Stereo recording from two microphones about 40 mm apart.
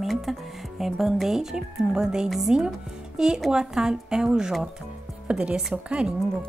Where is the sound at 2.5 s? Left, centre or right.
Centre; by 6.1 s right.